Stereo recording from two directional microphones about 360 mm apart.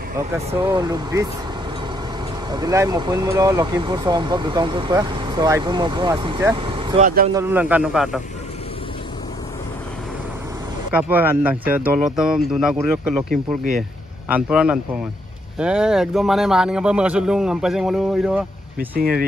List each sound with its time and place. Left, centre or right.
0.5 s speech: centre
2.5 s speech: centre
7.3 s speech: centre
10.9 s speech: centre